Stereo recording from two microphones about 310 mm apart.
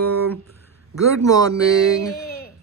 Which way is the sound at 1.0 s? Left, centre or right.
Centre.